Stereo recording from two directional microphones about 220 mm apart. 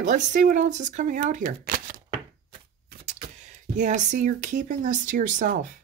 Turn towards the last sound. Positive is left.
turn(degrees=-35)  # may be behind; listen again after turning